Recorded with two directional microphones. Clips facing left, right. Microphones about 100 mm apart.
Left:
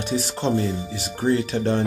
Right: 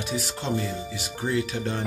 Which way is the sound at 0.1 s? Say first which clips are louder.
Left 6 dB; 30° left (ahead or behind).